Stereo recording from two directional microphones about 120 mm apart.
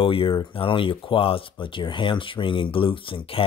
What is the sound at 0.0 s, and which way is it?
Speech, 50° left (ahead or behind).